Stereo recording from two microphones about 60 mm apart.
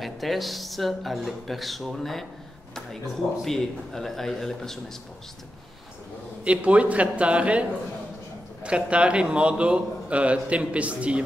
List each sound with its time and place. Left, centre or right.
0.0 s speech: centre
6.4 s a man's voice: right
8.6 s a man's voice: centre